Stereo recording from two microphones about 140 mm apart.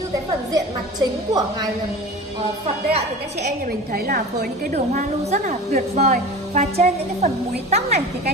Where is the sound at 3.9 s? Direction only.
90° right.